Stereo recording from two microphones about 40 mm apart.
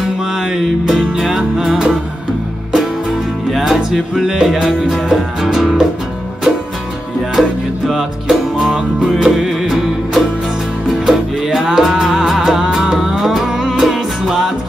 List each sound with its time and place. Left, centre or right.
0.4 s music: centre
7.3 s music: centre
12.7 s music: right
13.7 s music: centre